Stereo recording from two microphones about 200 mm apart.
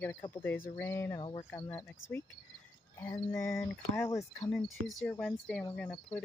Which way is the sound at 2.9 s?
10° left (ahead or behind).